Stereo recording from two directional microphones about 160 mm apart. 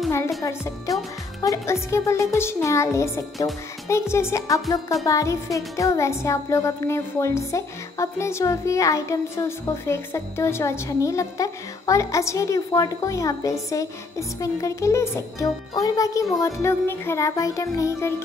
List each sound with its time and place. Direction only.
0.4 s a woman's voice: 20° left (ahead or behind)